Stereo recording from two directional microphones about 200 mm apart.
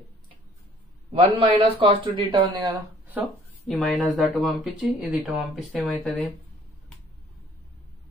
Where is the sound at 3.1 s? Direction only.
Centre (ahead or behind).